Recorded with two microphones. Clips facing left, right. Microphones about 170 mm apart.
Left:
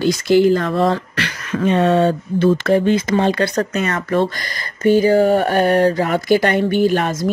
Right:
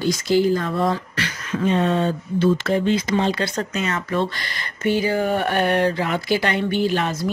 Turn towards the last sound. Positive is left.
turn(degrees=50)  # may be behind; listen again after turning